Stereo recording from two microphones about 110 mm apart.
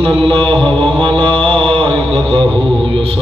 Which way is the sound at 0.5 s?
55° right (ahead or behind).